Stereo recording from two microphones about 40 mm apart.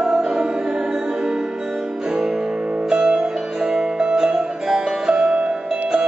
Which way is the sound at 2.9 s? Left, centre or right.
Centre.